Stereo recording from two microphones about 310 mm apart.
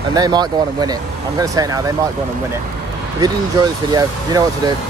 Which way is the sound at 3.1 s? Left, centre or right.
Centre.